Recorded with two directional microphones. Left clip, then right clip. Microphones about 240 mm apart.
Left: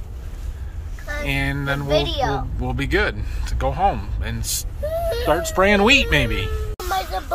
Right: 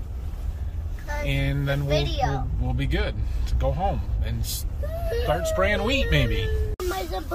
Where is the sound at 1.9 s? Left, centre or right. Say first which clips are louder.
Left 6 dB; left.